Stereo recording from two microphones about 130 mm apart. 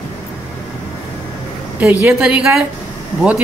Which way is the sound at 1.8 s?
15° right (ahead or behind).